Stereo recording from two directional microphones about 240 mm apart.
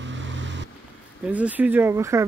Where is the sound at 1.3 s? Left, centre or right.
Centre.